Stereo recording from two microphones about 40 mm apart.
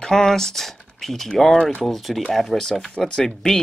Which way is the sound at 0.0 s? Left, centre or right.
Centre.